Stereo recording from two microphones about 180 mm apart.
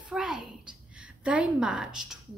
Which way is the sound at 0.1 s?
5° right (ahead or behind).